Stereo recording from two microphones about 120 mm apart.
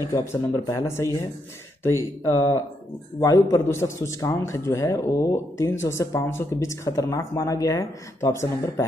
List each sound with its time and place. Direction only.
0.1 s a man's voice: 20° left (ahead or behind)